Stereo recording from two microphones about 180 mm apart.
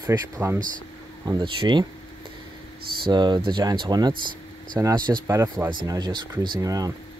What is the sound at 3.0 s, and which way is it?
Speech, 25° right (ahead or behind).